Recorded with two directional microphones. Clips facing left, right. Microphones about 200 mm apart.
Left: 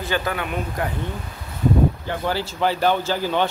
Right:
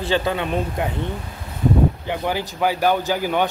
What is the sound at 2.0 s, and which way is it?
Speech, 15° right (ahead or behind).